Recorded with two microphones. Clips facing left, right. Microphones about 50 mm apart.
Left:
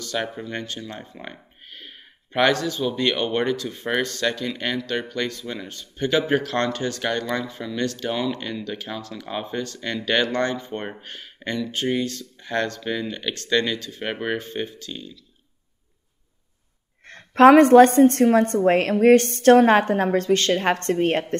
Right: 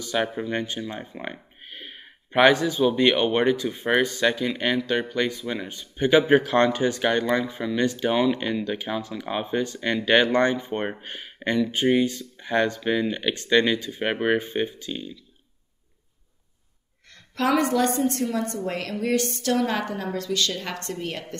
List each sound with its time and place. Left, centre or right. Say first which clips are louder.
0.0 s speech: right 2 dB; centre
17.0 s a woman's voice: left 13 dB; left